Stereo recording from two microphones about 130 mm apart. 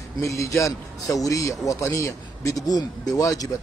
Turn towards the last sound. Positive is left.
turn(degrees=25)  # may be behind; listen again after turning